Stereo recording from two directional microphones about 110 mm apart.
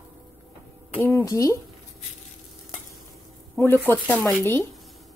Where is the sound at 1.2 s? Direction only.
30° left (ahead or behind).